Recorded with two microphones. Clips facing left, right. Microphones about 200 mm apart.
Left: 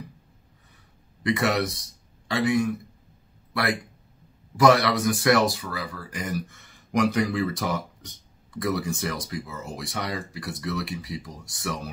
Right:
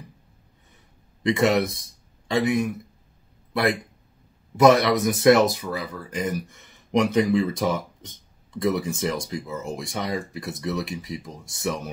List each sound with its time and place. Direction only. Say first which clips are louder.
1.2 s a man's voice: right 4 dB; 20° right (ahead or behind)
4.6 s speech: right 3 dB; 20° right (ahead or behind)